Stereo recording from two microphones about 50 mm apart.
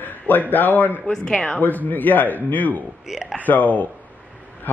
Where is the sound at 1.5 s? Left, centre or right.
Left.